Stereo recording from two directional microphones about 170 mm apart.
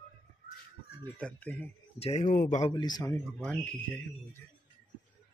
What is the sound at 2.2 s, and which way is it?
Speech, 55° left (ahead or behind).